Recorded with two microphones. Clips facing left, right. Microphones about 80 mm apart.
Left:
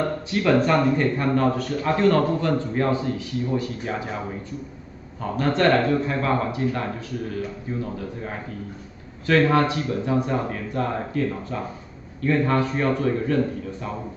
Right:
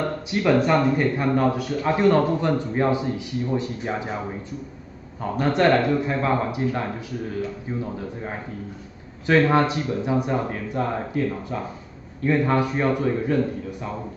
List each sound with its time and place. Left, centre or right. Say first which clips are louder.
0.3 s speech: right 1 dB; centre
5.4 s speech: right 1 dB; centre
7.8 s speech: even; right